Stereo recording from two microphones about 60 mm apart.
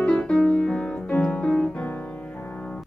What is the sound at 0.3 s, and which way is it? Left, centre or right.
Music, centre.